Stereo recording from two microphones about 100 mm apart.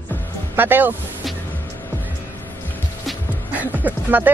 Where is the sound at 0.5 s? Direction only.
20° right (ahead or behind).